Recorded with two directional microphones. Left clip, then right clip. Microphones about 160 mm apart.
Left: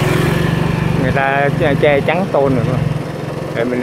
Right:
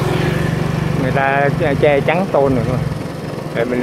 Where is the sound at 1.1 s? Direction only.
5° right (ahead or behind).